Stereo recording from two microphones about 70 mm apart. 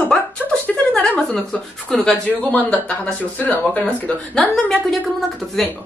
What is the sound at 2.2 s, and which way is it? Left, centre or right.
Speech, centre.